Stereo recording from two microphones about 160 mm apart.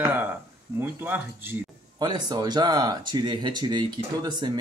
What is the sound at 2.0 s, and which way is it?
Speech, 25° right (ahead or behind).